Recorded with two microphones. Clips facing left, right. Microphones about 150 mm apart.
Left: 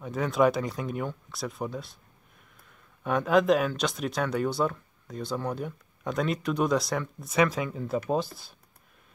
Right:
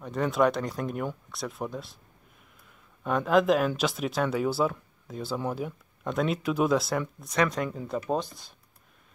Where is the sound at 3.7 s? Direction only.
5° right (ahead or behind).